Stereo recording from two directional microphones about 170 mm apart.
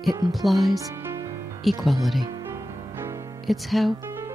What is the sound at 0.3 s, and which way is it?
Speech, centre (ahead or behind).